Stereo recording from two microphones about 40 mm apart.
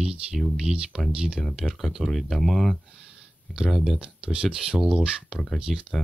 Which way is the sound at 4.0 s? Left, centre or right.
Right.